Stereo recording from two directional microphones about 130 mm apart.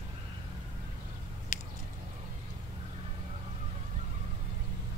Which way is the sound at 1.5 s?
70° left (ahead or behind).